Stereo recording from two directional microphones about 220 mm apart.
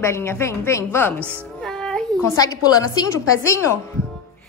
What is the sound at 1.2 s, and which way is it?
Speech, 10° right (ahead or behind).